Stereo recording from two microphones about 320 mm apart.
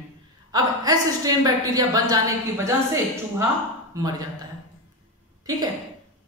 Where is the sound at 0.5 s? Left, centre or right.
Centre.